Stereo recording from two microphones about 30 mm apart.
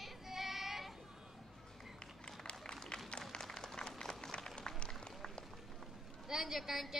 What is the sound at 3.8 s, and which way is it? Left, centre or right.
Run, left.